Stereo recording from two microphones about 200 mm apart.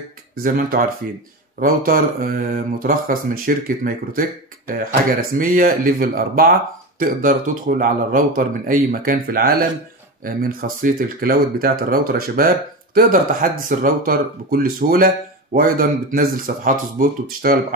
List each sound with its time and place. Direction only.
0.4 s speech: 45° right (ahead or behind)